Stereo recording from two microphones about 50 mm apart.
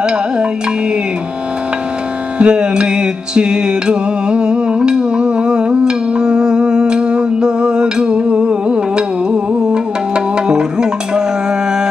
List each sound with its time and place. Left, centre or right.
2.3 s music: right